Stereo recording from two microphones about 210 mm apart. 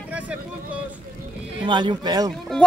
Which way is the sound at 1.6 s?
20° right (ahead or behind).